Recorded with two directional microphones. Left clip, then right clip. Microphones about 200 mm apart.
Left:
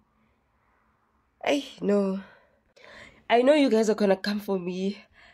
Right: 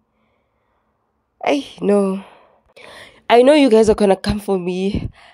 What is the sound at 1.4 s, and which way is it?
A woman's voice, 35° right (ahead or behind).